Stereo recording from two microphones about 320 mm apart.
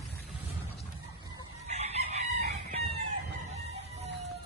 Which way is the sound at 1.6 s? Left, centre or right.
Centre.